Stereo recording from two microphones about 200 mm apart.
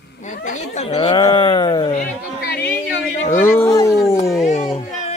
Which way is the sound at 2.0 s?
50° left (ahead or behind).